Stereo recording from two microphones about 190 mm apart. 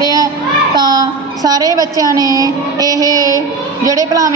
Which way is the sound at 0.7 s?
20° right (ahead or behind).